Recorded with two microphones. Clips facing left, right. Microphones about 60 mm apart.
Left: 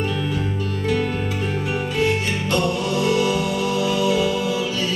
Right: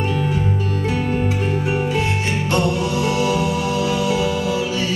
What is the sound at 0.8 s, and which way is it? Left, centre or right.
Music, centre.